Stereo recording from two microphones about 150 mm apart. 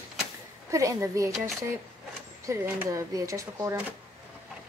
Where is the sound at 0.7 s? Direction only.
20° right (ahead or behind).